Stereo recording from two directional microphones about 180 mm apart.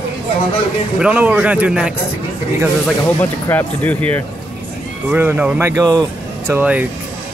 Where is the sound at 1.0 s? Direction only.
10° right (ahead or behind).